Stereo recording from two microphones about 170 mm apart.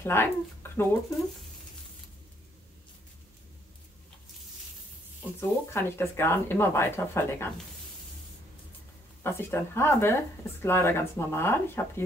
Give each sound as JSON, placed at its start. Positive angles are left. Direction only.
{"t": 0.0, "sound": "speech", "side_deg": 15}
{"t": 5.4, "sound": "speech", "side_deg": 15}
{"t": 9.2, "sound": "speech", "side_deg": 15}